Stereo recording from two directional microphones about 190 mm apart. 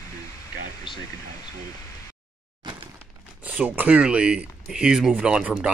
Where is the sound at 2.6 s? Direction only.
25° right (ahead or behind).